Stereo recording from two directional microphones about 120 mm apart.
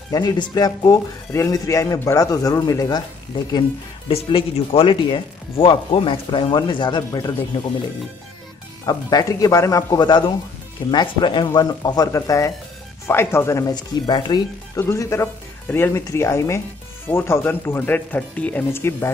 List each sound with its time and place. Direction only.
0.1 s speech: 35° left (ahead or behind)
4.1 s speech: 50° left (ahead or behind); by 7.3 s 30° left (ahead or behind)
8.8 s speech: 30° left (ahead or behind)
13.7 s speech: 35° left (ahead or behind)
14.8 s speech: 20° left (ahead or behind)